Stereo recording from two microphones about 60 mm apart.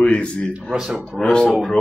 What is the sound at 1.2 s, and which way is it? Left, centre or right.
Speech, centre.